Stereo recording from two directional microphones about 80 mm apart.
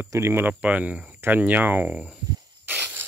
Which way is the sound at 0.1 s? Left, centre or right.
Right.